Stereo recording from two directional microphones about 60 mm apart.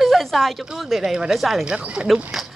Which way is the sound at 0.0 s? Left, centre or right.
Centre.